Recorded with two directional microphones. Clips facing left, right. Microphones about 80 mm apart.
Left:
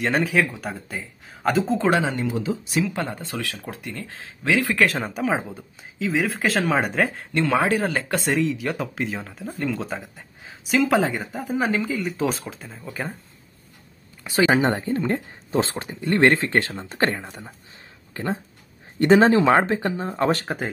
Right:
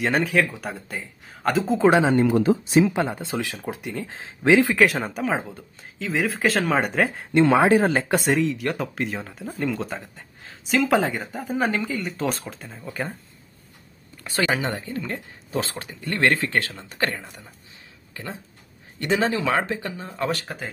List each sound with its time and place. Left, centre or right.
0.0 s speech: centre
1.9 s speech: right
2.1 s speech: right
2.7 s speech: right
4.7 s speech: centre
7.3 s speech: right
8.3 s speech: centre
14.4 s speech: left
18.1 s speech: left